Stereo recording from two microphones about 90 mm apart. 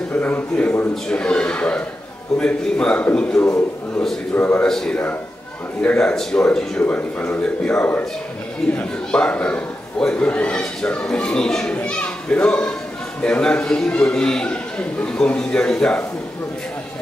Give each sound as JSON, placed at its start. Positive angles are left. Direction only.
{"t": 0.1, "sound": "a sound", "side_deg": 20}
{"t": 1.0, "sound": "a man's voice", "side_deg": 10}
{"t": 4.6, "sound": "a man's voice", "side_deg": 5}